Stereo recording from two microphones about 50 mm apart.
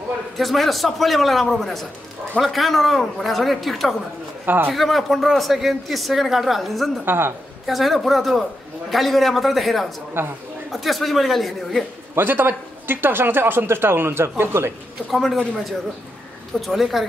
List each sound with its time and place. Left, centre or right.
0.4 s a man's voice: centre
7.1 s speech: right
7.6 s a man's voice: centre
10.2 s speech: right
10.7 s a man's voice: centre
12.2 s speech: right
15.0 s a man's voice: centre